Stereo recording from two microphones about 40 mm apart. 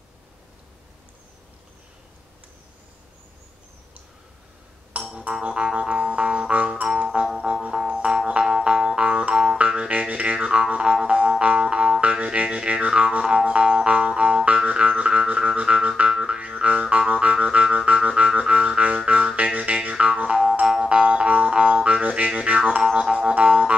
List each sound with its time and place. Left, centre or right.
4.9 s music: right
5.4 s music: right
20.9 s music: right